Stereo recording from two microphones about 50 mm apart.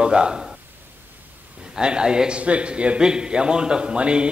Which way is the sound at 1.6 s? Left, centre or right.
Centre.